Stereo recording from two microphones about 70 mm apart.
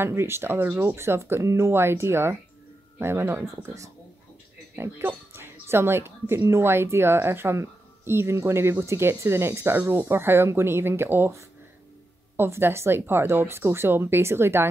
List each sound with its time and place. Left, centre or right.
0.0 s speech: right
4.7 s speech: right
9.8 s speech: right
12.4 s speech: right